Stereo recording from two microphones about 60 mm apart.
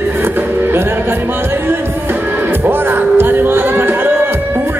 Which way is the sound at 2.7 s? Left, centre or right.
Right.